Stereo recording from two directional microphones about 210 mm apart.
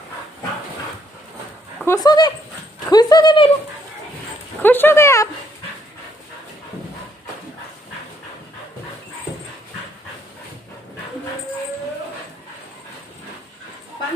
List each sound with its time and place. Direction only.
1.9 s speech: 20° left (ahead or behind)
2.9 s a sound: 20° left (ahead or behind)
4.6 s dog: 10° left (ahead or behind)